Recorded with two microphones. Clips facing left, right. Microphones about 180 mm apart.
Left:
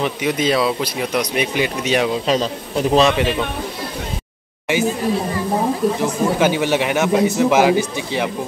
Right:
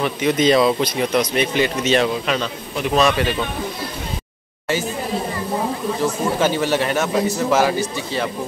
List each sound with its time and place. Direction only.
0.0 s speech: 10° left (ahead or behind)
2.2 s a man's voice: 35° left (ahead or behind)
6.4 s speech: 15° left (ahead or behind)